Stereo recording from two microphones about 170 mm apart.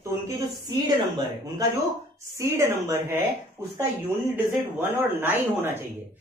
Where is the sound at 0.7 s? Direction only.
25° right (ahead or behind).